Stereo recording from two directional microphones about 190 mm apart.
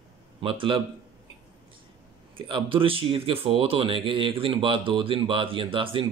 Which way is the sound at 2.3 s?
25° right (ahead or behind).